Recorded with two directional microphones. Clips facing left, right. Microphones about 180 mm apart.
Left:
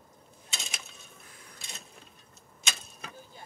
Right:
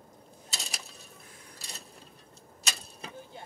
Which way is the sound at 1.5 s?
35° right (ahead or behind).